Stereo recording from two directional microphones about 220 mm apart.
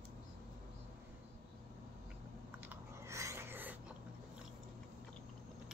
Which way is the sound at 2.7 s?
15° right (ahead or behind).